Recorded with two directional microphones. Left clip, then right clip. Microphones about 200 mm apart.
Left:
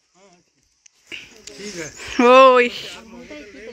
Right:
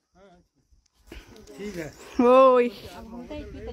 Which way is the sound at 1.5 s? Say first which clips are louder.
Left 3 dB; 15° right (ahead or behind).